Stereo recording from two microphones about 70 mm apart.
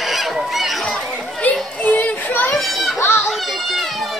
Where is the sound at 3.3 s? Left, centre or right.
Centre.